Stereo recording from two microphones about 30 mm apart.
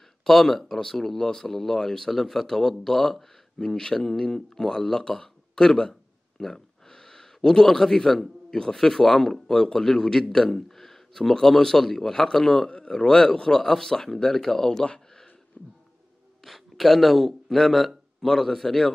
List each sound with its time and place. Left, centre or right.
0.2 s speech: centre
3.7 s speech: centre
5.8 s a sound: centre
7.7 s speech: centre
10.8 s a sound: centre
11.4 s speech: centre
15.6 s a sound: left
16.4 s speech: centre
18.2 s speech: centre